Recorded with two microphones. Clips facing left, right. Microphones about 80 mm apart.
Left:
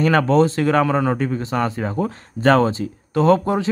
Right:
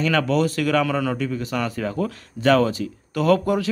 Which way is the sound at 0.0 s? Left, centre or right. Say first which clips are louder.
Left 5 dB; left.